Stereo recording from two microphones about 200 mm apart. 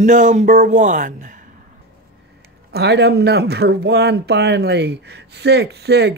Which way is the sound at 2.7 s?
55° right (ahead or behind).